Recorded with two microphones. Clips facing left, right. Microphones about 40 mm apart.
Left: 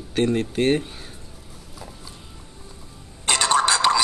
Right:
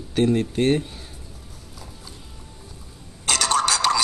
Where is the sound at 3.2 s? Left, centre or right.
Centre.